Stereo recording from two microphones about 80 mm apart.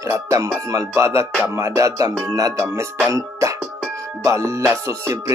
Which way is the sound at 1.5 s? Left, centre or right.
Right.